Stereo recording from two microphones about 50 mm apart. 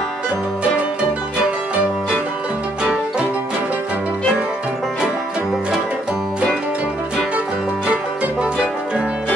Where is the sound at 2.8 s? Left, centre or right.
Right.